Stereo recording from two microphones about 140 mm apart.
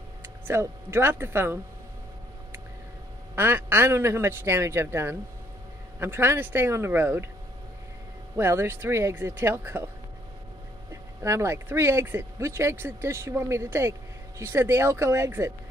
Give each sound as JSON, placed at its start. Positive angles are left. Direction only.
{"t": 0.5, "sound": "a man's voice", "side_deg": -20}
{"t": 3.3, "sound": "a man's voice", "side_deg": -15}
{"t": 8.4, "sound": "a man's voice", "side_deg": -15}
{"t": 10.9, "sound": "speech", "side_deg": -20}